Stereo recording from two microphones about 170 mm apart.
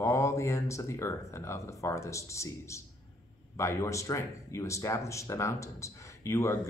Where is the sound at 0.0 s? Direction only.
15° left (ahead or behind).